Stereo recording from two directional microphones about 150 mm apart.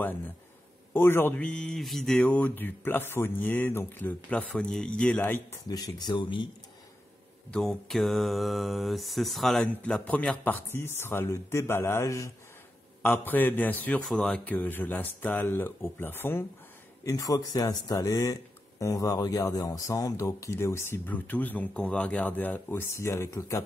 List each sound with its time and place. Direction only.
0.9 s mantra: 15° left (ahead or behind)
5.7 s speech: 25° left (ahead or behind)
7.5 s mantra: centre (ahead or behind)
17.0 s speech: 25° left (ahead or behind)